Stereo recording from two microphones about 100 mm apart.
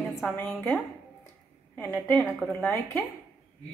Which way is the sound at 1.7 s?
20° left (ahead or behind).